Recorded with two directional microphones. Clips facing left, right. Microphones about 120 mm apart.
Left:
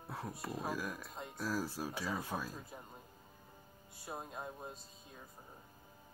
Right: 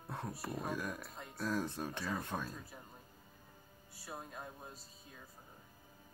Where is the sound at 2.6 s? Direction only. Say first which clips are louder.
Left 2 dB; 20° left (ahead or behind).